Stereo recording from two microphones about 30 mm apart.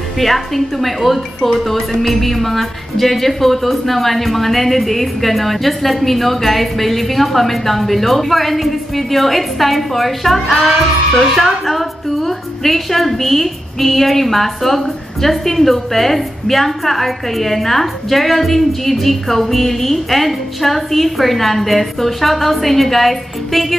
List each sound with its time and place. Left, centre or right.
0.2 s a woman's voice: centre